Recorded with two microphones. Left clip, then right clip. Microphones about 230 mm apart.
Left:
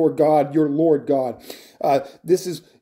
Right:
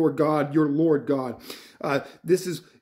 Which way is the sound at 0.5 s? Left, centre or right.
Centre.